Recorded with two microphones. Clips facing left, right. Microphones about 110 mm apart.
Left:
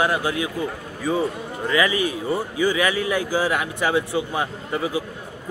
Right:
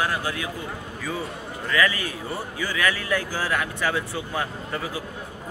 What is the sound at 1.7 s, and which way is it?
A man's voice, 15° left (ahead or behind).